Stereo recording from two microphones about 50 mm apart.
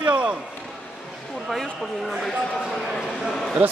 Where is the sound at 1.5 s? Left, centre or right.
Centre.